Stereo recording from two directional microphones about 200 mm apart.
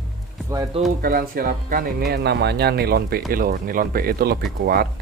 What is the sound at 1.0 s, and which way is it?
Speech, 50° right (ahead or behind).